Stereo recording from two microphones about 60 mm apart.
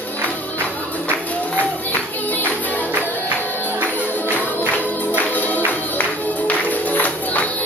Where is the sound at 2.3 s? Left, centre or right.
Left.